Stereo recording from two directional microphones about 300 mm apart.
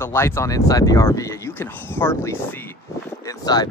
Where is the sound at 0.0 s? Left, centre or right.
Centre.